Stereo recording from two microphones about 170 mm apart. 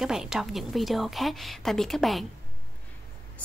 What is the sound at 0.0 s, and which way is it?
A woman's voice, 5° right (ahead or behind).